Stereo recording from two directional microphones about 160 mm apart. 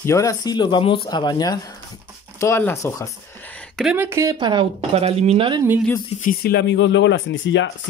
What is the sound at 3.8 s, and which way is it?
Speech, 15° right (ahead or behind).